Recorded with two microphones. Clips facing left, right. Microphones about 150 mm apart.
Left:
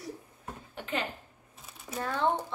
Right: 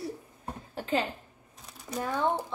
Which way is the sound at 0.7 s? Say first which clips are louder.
Right 5 dB; 35° right (ahead or behind).